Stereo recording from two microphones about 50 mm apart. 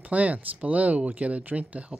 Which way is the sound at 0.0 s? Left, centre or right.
Right.